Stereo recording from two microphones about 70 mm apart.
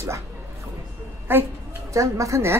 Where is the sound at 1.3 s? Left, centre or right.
Right.